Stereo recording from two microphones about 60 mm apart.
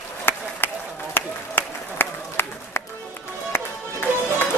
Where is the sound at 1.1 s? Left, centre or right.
Left.